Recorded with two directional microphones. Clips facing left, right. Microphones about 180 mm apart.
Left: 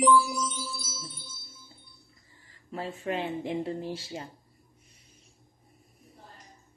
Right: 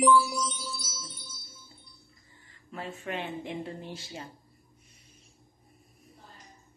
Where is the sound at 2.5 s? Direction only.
30° left (ahead or behind).